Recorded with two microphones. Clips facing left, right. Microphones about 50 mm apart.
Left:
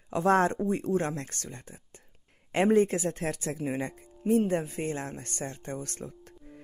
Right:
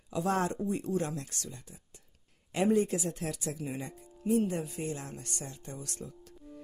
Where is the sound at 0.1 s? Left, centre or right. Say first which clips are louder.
Left 7 dB; left.